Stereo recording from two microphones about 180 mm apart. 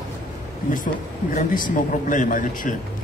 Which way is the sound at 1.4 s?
50° left (ahead or behind).